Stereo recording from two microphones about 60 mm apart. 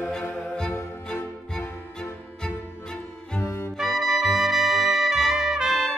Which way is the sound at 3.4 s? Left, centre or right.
Left.